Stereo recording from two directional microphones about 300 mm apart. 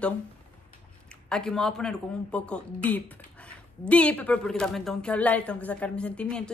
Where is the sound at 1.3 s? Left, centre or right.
Centre.